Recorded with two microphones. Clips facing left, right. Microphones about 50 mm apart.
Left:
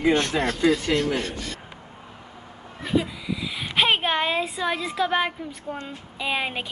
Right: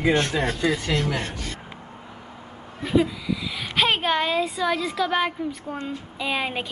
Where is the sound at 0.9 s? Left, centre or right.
Left.